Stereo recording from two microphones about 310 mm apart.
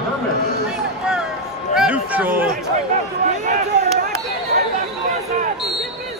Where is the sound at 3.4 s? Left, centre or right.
Right.